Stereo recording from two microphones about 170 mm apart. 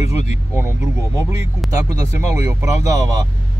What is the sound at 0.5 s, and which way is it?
Speech, 15° right (ahead or behind).